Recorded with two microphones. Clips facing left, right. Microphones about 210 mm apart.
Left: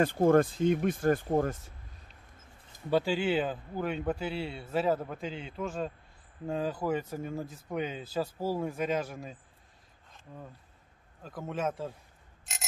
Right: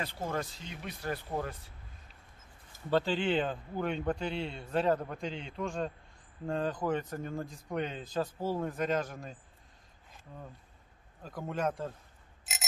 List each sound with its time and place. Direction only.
0.0 s speech: 55° left (ahead or behind)
2.9 s a man's voice: 10° left (ahead or behind)
11.2 s a man's voice: centre (ahead or behind)
12.5 s bicycle bell: 5° right (ahead or behind)